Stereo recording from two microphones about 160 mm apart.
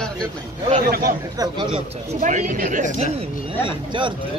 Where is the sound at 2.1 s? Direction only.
50° right (ahead or behind).